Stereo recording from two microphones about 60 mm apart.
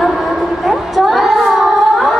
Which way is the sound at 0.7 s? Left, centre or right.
Centre.